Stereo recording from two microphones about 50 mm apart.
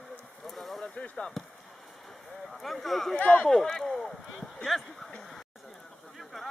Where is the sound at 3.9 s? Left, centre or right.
Centre.